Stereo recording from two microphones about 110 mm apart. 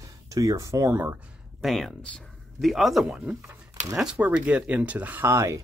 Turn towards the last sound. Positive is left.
turn(degrees=-25)  # may be behind; listen again after turning